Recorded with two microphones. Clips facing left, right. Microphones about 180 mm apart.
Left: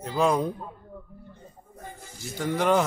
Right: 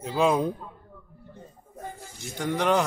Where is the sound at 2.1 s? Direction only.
Centre (ahead or behind).